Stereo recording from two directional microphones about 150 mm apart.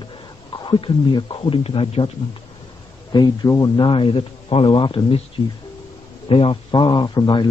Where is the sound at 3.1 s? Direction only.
30° left (ahead or behind).